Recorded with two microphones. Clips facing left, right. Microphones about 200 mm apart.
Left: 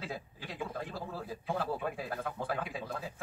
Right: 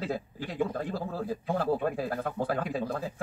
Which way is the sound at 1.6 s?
45° right (ahead or behind).